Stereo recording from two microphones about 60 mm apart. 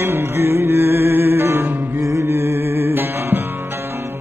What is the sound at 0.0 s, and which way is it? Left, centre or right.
Music, right.